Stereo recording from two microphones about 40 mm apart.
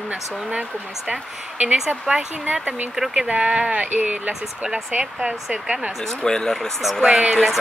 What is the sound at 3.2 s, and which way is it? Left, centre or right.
Speech, right.